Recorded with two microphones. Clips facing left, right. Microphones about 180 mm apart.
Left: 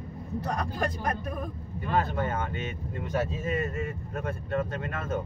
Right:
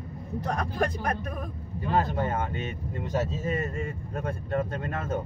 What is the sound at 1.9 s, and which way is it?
Speech, 25° right (ahead or behind).